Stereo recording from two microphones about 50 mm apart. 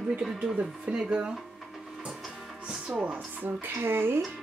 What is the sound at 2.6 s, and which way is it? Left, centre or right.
Speech, right.